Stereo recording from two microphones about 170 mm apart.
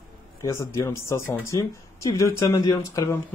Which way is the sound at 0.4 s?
15° left (ahead or behind).